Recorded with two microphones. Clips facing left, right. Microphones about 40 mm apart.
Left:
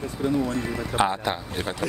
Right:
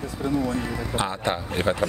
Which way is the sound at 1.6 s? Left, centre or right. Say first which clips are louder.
Right 6 dB; right.